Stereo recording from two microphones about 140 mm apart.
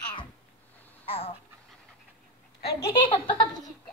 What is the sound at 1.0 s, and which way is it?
Dog, 45° left (ahead or behind).